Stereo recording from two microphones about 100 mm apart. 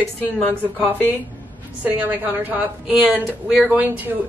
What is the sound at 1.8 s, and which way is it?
Speech, 15° right (ahead or behind).